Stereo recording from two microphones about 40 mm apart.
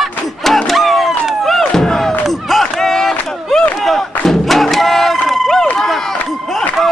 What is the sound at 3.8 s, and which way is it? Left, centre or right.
Crowd, centre.